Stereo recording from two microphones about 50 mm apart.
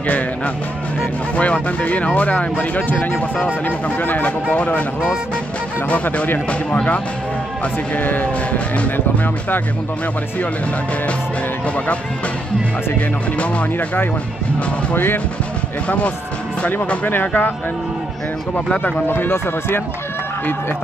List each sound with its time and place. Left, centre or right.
1.3 s speech: left
6.0 s speech: left
6.7 s speech: left
7.9 s speech: left
16.9 s speech: left
19.0 s speech: left